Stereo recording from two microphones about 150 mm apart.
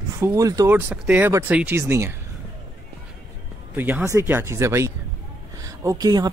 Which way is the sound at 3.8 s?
10° right (ahead or behind).